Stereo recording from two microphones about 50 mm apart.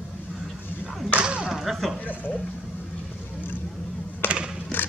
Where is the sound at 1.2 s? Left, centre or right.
Centre.